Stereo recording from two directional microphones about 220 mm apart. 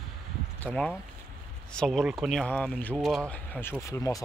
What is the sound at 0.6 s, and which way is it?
Speech, 5° left (ahead or behind).